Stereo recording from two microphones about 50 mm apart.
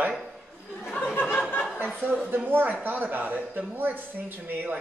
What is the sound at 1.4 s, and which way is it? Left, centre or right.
Chuckle, left.